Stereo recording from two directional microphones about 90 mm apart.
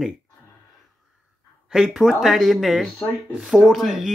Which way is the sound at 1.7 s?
5° right (ahead or behind).